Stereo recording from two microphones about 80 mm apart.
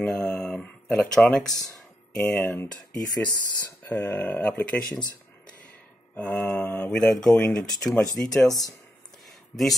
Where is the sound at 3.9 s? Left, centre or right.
Centre.